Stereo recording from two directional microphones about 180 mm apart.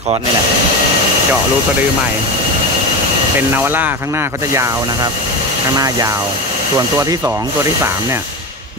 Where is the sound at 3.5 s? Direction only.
10° right (ahead or behind).